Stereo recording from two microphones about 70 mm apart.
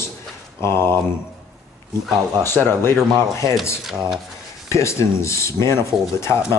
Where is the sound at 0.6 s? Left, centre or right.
Left.